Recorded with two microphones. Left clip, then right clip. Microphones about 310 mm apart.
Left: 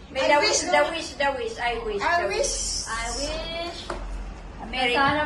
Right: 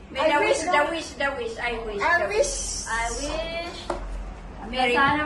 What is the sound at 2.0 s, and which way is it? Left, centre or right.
A woman's voice, centre.